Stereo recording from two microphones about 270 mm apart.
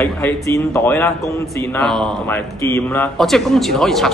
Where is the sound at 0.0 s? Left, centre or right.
Centre.